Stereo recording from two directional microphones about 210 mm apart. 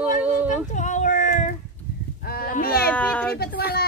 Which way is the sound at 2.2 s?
45° left (ahead or behind).